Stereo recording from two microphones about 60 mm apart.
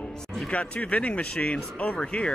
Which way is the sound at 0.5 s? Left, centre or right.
Left.